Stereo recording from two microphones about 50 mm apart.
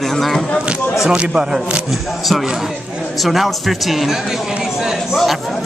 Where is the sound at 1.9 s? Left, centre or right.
Centre.